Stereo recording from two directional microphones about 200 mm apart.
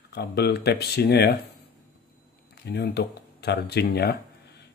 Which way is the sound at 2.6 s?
55° left (ahead or behind).